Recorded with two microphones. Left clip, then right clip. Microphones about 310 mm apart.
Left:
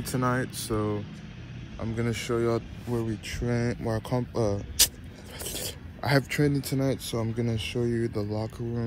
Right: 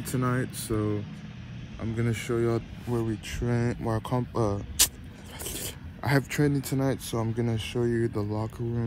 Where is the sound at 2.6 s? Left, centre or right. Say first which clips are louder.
Right 1 dB; centre.